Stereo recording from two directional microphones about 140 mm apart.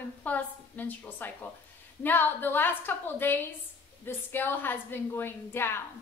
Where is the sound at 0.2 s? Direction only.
10° left (ahead or behind).